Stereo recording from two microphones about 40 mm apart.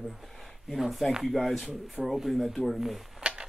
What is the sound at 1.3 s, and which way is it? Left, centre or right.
Speech, centre.